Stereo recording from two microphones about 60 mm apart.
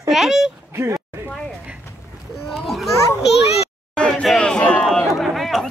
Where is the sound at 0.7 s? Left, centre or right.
Right.